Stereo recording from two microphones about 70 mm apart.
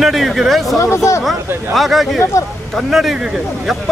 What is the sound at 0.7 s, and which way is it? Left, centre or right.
Speech, left.